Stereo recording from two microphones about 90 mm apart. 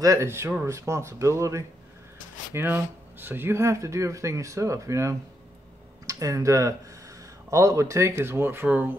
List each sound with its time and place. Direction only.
0.0 s speech: 35° right (ahead or behind)
2.5 s speech: 25° right (ahead or behind)